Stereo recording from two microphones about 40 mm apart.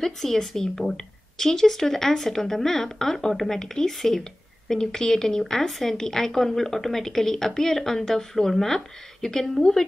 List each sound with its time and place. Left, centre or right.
0.0 s speech: centre